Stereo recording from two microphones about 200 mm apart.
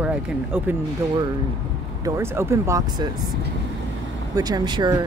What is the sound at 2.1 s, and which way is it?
Speech, 15° right (ahead or behind).